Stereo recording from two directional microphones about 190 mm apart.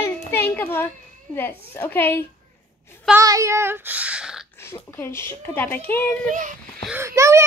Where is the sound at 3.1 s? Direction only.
15° right (ahead or behind).